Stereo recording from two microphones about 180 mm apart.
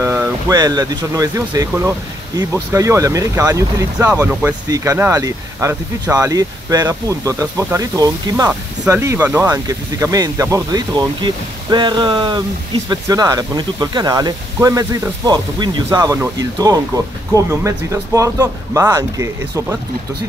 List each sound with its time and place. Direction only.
0.0 s speech: 15° right (ahead or behind)